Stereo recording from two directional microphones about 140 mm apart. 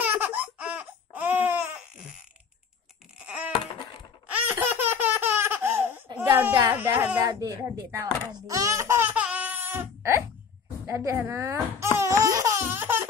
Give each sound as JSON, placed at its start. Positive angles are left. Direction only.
{"t": 0.0, "sound": "laughter", "side_deg": -10}
{"t": 3.3, "sound": "a sound", "side_deg": -10}
{"t": 4.3, "sound": "laughter", "side_deg": -10}
{"t": 6.1, "sound": "a sound", "side_deg": -15}
{"t": 7.2, "sound": "speech", "side_deg": -25}
{"t": 12.0, "sound": "laughter", "side_deg": -20}